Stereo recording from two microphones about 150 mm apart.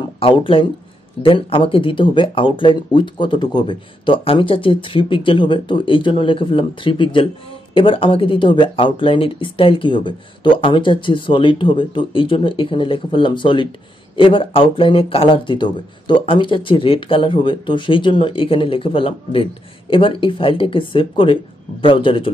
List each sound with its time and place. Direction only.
0.2 s speech: 35° left (ahead or behind)